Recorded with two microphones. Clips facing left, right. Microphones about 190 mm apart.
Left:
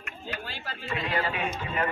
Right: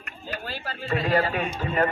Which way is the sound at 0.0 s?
40° right (ahead or behind).